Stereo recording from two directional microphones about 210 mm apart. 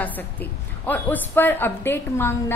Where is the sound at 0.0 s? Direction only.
10° left (ahead or behind).